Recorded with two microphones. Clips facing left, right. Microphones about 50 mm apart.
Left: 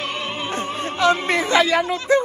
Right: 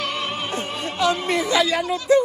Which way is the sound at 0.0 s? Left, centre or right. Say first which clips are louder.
Even; left.